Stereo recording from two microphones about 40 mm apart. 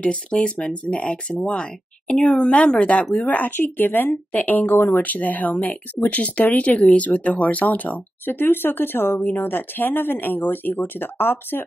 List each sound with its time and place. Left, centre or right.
0.0 s speech: left
3.3 s speech: left